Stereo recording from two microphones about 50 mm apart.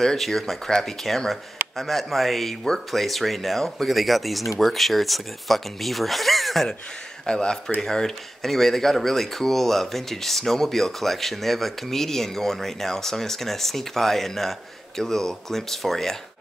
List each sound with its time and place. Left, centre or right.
0.0 s speech: centre
7.2 s speech: centre